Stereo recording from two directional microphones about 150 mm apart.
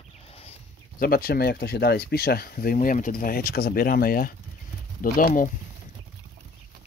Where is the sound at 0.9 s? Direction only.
75° left (ahead or behind).